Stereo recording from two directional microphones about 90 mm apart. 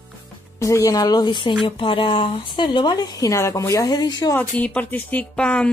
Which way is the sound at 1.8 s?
80° left.